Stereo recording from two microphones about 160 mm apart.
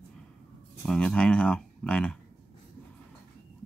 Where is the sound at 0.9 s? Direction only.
5° left (ahead or behind).